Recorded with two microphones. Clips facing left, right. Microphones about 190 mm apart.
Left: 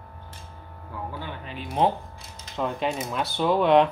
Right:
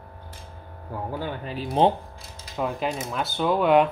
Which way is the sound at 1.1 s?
40° right (ahead or behind).